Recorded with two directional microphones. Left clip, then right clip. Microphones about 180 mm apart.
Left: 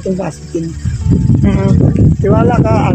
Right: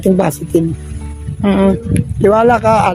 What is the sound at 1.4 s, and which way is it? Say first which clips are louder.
Speech: right 6 dB; 35° right (ahead or behind).